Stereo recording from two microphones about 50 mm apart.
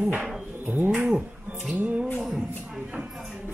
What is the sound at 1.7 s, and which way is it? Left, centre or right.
Music, right.